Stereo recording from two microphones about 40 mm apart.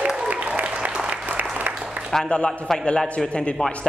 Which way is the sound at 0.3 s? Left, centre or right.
Right.